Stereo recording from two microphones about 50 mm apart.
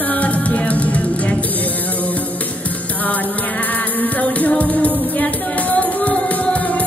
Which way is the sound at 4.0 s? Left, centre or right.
Left.